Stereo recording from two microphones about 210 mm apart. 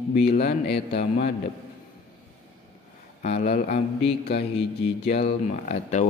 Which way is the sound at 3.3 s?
45° left (ahead or behind).